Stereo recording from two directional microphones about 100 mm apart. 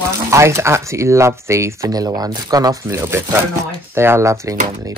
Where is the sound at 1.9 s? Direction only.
40° right (ahead or behind).